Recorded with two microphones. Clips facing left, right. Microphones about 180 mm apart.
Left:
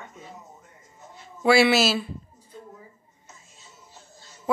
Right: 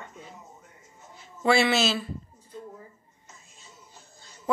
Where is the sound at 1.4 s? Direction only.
10° left (ahead or behind).